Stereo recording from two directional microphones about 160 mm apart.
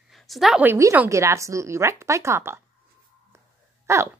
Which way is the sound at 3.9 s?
15° right (ahead or behind).